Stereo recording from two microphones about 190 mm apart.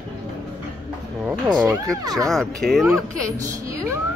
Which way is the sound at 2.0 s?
20° right (ahead or behind).